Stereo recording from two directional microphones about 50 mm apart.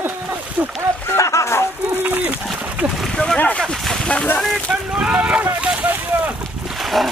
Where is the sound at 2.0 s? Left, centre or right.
Right.